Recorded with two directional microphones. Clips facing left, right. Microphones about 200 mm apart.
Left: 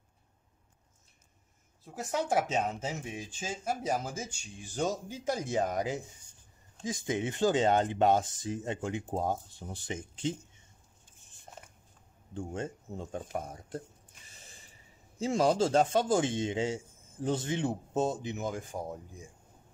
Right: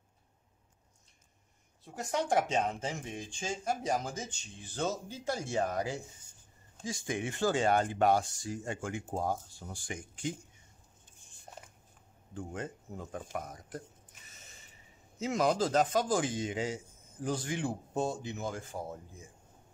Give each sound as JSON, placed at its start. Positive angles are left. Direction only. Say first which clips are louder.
{"t": 1.9, "sound": "a man's voice", "louder": "even", "side_deg": 5}
{"t": 12.4, "sound": "a man's voice", "louder": "left 3 dB", "side_deg": 25}